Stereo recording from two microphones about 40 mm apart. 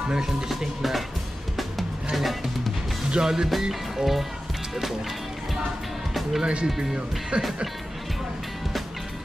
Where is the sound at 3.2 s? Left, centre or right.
Centre.